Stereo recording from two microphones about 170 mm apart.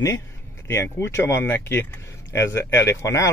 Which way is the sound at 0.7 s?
15° left (ahead or behind).